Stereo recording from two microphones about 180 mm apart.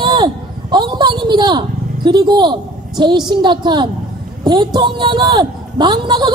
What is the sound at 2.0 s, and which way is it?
A woman's voice, 25° right (ahead or behind).